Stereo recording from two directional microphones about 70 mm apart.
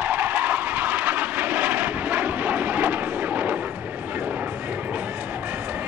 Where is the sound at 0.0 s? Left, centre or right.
Right.